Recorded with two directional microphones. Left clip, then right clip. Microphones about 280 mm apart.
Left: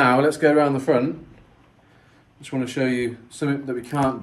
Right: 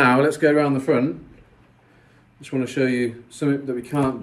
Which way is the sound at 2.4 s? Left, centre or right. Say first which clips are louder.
Right 2 dB; centre.